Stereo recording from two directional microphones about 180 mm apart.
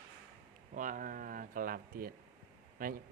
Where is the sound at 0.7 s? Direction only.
45° right (ahead or behind).